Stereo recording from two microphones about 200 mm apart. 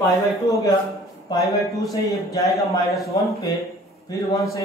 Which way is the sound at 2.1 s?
15° left (ahead or behind).